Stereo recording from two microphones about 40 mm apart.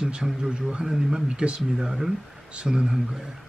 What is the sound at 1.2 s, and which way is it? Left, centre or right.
Speech, right.